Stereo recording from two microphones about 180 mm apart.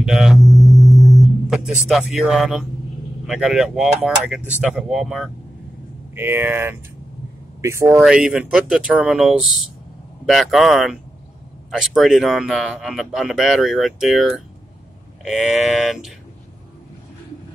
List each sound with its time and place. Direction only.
0.0 s a sound: centre (ahead or behind)
1.9 s speech: centre (ahead or behind)
6.1 s speech: 10° right (ahead or behind)
8.0 s speech: 5° right (ahead or behind)
15.2 s speech: centre (ahead or behind)